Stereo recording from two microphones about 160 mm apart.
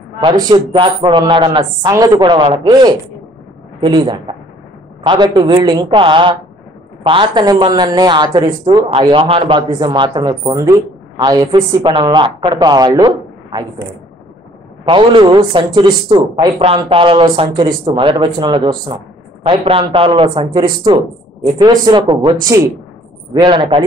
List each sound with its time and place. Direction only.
0.2 s speech: 30° right (ahead or behind)
14.9 s speech: 30° right (ahead or behind)